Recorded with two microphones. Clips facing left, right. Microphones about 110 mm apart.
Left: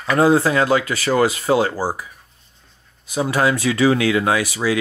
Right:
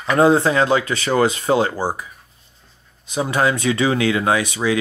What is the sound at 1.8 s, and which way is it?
Speech, 20° right (ahead or behind).